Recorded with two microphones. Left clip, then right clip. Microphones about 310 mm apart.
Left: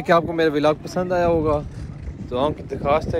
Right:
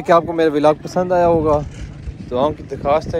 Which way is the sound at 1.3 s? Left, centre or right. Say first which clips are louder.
Right 5 dB; right.